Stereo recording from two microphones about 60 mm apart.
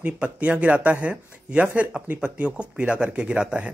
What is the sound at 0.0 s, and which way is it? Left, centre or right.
Speech, right.